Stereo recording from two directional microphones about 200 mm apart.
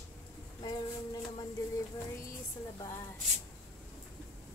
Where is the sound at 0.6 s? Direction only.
20° left (ahead or behind).